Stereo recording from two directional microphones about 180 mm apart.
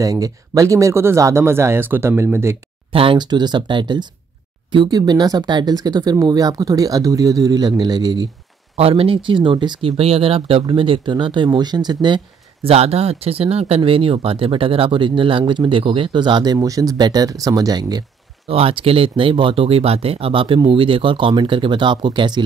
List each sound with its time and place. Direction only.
0.0 s speech: 20° right (ahead or behind)
2.9 s speech: 30° right (ahead or behind)